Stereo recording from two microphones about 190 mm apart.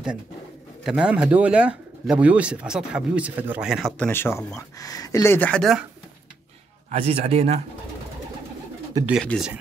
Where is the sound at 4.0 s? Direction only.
10° left (ahead or behind).